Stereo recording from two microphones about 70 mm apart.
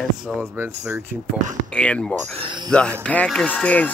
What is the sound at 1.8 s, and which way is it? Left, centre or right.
Speech, centre.